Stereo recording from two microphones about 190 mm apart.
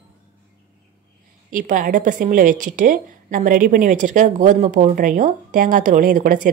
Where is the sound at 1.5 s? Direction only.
45° right (ahead or behind).